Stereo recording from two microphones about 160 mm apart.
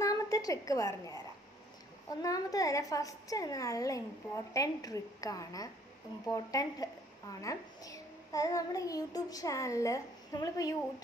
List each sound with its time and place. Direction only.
0.0 s a woman's voice: 20° left (ahead or behind)